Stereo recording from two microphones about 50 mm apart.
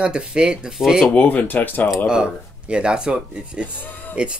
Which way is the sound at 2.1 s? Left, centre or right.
Centre.